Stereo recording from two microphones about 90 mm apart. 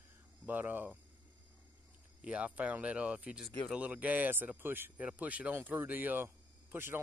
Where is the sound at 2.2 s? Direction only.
15° right (ahead or behind).